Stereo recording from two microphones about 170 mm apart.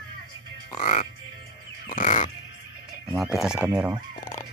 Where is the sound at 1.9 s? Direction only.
45° left (ahead or behind).